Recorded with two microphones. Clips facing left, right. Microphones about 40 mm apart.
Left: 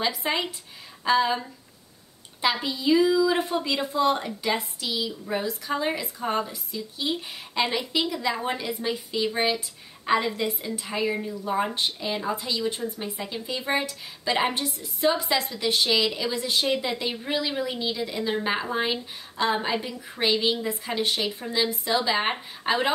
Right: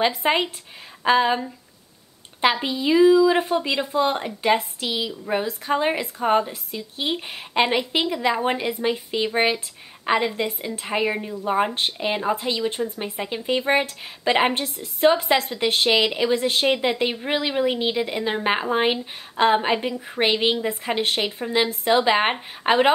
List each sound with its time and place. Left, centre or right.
0.0 s speech: right
2.6 s speech: right